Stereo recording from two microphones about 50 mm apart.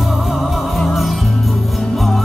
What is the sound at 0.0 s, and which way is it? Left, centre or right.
Music, centre.